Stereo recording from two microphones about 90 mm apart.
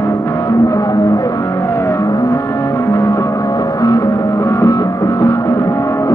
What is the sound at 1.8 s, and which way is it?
Vehicle, 40° left (ahead or behind).